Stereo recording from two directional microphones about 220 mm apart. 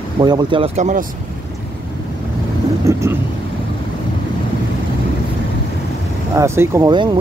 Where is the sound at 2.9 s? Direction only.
10° right (ahead or behind).